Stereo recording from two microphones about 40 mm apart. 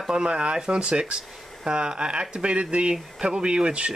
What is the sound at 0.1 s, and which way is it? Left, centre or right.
Speech, right.